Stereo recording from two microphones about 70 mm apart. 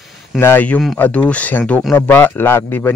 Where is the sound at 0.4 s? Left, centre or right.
Left.